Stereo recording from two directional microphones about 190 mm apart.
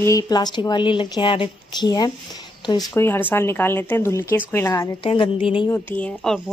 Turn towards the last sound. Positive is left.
turn(degrees=5)  # may be behind; listen again after turning